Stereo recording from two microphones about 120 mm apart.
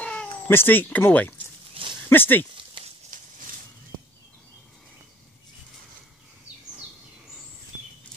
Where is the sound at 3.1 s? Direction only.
90° right.